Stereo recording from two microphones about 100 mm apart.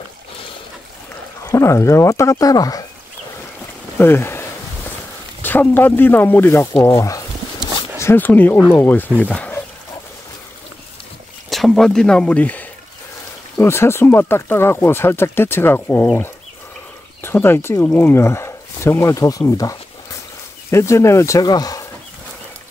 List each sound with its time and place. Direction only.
1.4 s speech: 30° left (ahead or behind)
4.0 s speech: 25° left (ahead or behind)
7.0 s speech: 35° left (ahead or behind)
8.0 s speech: 20° left (ahead or behind)
11.5 s speech: centre (ahead or behind)
13.6 s speech: 25° left (ahead or behind)
17.2 s speech: 25° left (ahead or behind)
21.4 s speech: 40° left (ahead or behind)